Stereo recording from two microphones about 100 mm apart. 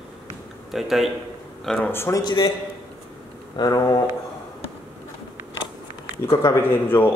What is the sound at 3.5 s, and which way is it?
Speech, 40° left (ahead or behind).